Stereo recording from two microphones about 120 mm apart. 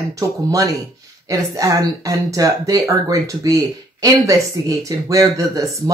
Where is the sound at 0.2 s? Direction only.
30° right (ahead or behind).